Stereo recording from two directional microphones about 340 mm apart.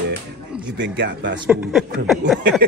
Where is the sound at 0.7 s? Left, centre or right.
Right.